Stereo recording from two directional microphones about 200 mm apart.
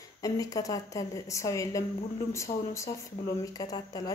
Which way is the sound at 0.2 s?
15° left (ahead or behind).